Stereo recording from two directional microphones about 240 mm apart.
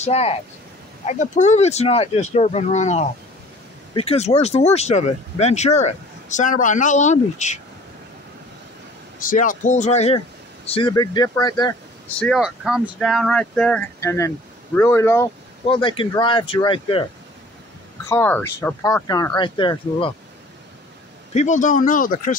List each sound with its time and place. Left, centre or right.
0.0 s speech: left
9.2 s speech: left; by 11.7 s centre
12.2 s speech: centre
15.6 s speech: left
18.0 s speech: centre
21.3 s speech: left